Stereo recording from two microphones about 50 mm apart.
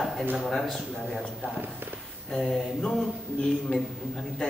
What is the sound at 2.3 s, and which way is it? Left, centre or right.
A man's voice, centre.